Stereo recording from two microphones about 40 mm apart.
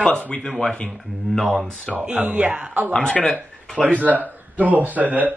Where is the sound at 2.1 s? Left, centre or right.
Right.